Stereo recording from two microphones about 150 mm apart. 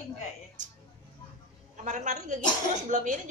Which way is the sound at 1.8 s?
55° right (ahead or behind).